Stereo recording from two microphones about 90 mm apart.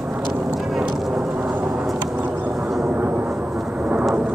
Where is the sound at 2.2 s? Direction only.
20° right (ahead or behind).